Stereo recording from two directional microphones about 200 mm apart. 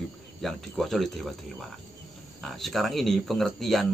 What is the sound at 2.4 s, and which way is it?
Speech, centre (ahead or behind).